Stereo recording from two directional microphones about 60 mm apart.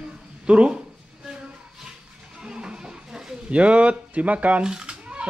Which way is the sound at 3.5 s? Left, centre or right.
Centre.